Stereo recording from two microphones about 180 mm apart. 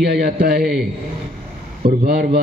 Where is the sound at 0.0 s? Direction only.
60° right (ahead or behind).